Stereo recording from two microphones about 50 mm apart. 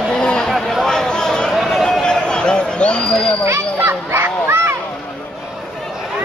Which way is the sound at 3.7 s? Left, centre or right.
Right.